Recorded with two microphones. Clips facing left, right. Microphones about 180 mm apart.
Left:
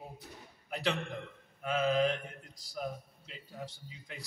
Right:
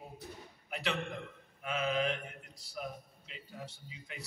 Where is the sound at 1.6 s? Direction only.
35° left (ahead or behind).